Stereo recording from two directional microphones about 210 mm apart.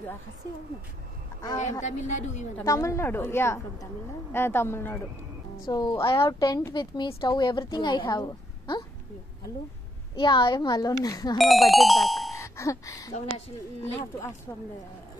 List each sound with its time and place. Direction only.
1.6 s a woman's voice: 35° left (ahead or behind)
2.5 s a woman's voice: 15° left (ahead or behind)
10.1 s a woman's voice: 20° left (ahead or behind)
11.3 s speech: centre (ahead or behind)
12.4 s music: 15° left (ahead or behind)
13.8 s a woman's voice: 10° left (ahead or behind)